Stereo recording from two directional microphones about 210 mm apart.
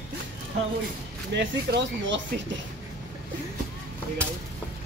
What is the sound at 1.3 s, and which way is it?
Speech, 60° right (ahead or behind).